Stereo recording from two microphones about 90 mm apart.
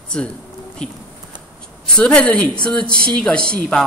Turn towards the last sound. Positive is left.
turn(degrees=10)  # may be behind; listen again after turning